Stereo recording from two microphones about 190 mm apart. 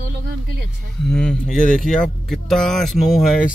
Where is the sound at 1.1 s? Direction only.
5° left (ahead or behind).